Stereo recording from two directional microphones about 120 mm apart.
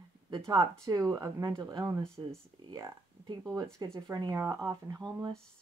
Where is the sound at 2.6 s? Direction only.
40° right (ahead or behind).